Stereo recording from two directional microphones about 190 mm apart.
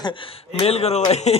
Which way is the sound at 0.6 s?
35° left (ahead or behind).